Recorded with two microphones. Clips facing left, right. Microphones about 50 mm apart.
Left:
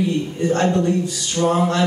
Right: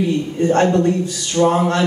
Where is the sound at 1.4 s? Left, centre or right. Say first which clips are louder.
Right 2 dB; right.